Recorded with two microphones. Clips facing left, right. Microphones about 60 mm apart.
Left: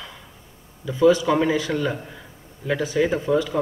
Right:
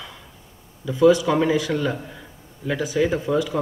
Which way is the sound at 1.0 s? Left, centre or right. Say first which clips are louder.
Right 1 dB; left.